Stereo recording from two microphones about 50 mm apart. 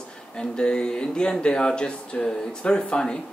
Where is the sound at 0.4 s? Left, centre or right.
Centre.